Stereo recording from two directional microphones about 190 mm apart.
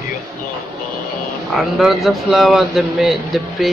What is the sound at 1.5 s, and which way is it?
Speech, centre (ahead or behind).